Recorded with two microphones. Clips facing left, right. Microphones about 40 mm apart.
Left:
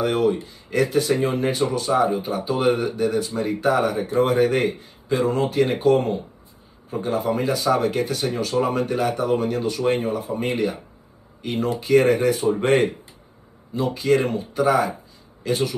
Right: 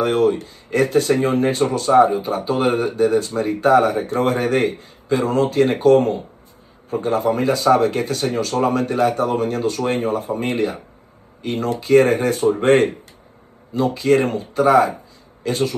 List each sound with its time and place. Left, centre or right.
0.0 s a man's voice: right